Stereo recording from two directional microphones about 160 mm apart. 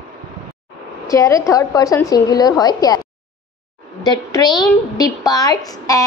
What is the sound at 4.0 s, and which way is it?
A woman's voice, 25° left (ahead or behind).